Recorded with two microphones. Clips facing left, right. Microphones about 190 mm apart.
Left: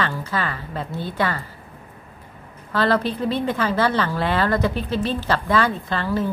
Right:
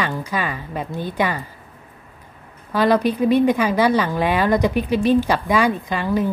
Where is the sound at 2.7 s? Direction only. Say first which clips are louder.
Right 3 dB; 15° right (ahead or behind).